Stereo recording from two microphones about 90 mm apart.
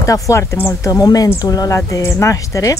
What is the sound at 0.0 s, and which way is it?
Speech, 35° left (ahead or behind).